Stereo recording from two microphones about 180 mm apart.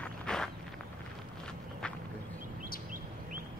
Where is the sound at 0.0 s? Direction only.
5° left (ahead or behind).